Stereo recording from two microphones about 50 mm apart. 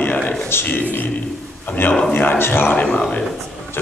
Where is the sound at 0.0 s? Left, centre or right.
Left.